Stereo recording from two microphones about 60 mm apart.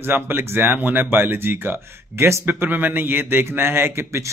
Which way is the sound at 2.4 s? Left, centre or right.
Right.